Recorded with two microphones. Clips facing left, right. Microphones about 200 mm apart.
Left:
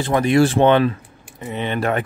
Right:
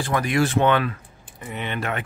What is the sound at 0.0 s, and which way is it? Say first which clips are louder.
Speech: left 6 dB; 25° left (ahead or behind).